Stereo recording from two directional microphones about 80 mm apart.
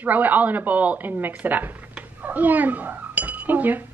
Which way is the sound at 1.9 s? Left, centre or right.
Right.